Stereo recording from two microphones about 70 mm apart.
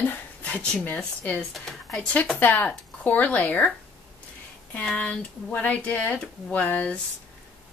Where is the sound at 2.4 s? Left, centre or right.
Left.